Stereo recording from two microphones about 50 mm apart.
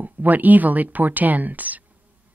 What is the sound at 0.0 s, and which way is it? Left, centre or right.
Speech, right.